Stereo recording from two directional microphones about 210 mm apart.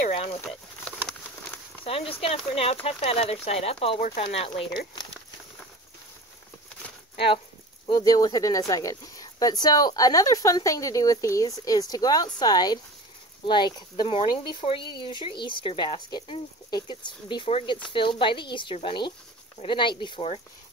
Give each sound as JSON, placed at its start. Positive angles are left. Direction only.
{"t": 0.0, "sound": "a sound", "side_deg": 30}
{"t": 0.9, "sound": "patter", "side_deg": 5}
{"t": 1.9, "sound": "speech", "side_deg": 30}
{"t": 7.8, "sound": "speech", "side_deg": 20}